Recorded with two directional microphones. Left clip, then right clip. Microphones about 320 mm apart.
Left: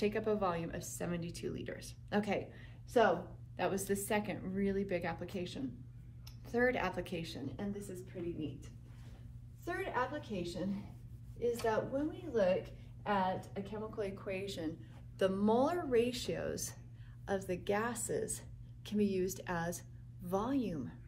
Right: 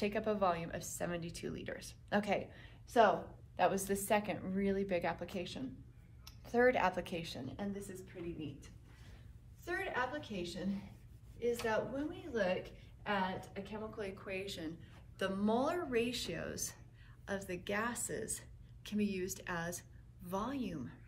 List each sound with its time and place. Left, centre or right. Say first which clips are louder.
0.0 s a woman's voice: even; centre
9.7 s speech: left 1 dB; centre